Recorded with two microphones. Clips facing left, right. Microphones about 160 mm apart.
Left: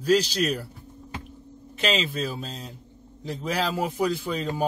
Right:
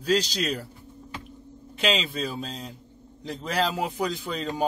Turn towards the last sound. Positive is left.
turn(degrees=10)  # may be behind; listen again after turning